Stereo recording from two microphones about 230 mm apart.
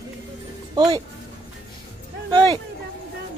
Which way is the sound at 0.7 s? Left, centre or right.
Centre.